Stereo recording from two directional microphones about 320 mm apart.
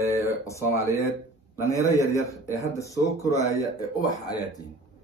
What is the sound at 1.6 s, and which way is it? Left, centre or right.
Speech, centre.